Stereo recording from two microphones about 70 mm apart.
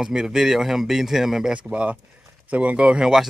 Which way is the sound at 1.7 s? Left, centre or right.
Centre.